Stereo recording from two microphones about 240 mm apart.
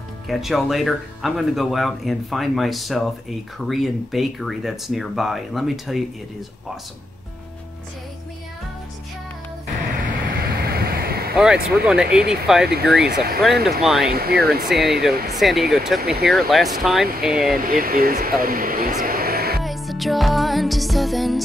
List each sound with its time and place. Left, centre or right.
0.3 s speech: centre
10.0 s boat: right
11.3 s speech: centre
13.0 s speech: right
13.7 s speech: centre
14.1 s speech: right
14.7 s speech: centre
16.0 s speech: right
16.3 s speech: centre
17.6 s speech: right
19.6 s music: centre